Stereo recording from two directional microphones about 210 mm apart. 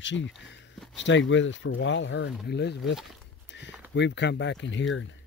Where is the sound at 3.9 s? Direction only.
55° left (ahead or behind).